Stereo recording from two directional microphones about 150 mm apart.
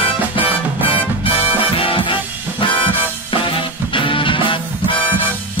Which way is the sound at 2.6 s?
35° left (ahead or behind).